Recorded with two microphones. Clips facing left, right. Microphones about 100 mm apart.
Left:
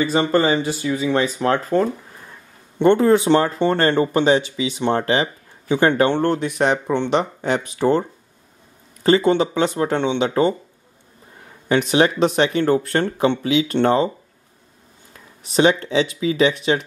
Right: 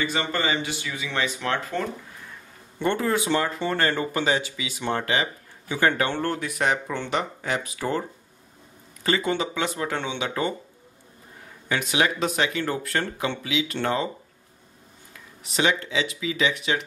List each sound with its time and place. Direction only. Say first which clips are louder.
0.0 s speech: left 9 dB; 35° left (ahead or behind)
9.0 s speech: left 9 dB; 30° left (ahead or behind)
11.7 s speech: left 8 dB; 30° left (ahead or behind)
15.4 s speech: left 8 dB; 35° left (ahead or behind)